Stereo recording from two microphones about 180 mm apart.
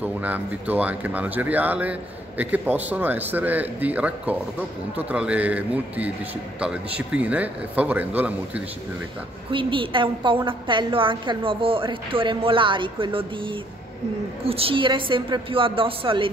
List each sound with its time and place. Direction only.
0.0 s speech: 10° right (ahead or behind)
9.5 s a woman's voice: 30° right (ahead or behind)